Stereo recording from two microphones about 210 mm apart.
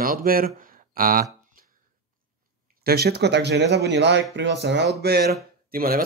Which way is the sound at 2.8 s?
50° right (ahead or behind).